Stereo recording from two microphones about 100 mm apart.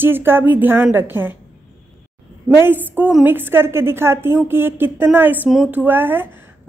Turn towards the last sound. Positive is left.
turn(degrees=-20)  # may be behind; listen again after turning